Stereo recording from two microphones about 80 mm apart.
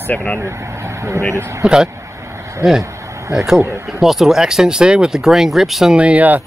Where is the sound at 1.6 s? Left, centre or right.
Centre.